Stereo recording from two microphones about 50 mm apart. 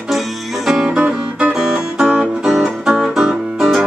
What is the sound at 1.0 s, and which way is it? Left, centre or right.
Music, right.